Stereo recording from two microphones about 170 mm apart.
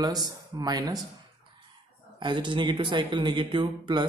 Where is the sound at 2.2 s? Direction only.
25° right (ahead or behind).